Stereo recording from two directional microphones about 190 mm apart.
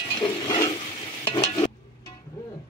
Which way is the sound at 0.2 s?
25° left (ahead or behind).